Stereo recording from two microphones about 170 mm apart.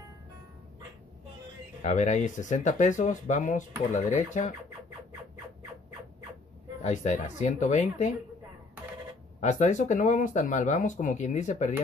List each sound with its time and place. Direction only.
1.8 s speech: 45° left (ahead or behind)
6.8 s speech: 45° left (ahead or behind)
9.4 s speech: 45° left (ahead or behind)